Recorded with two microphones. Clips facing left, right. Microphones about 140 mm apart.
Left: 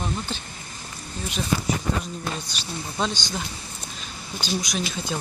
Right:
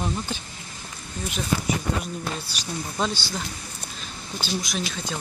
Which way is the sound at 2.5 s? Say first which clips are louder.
Right 1 dB; 10° right (ahead or behind).